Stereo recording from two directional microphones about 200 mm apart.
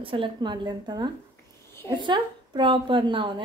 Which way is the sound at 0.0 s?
25° right (ahead or behind).